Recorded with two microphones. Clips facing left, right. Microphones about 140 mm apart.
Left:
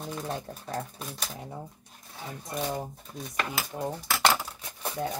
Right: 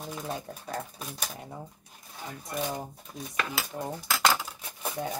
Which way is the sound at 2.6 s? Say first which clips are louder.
Left 1 dB; 5° left (ahead or behind).